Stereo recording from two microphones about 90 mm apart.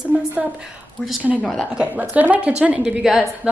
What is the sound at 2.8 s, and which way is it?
Speech, 5° right (ahead or behind).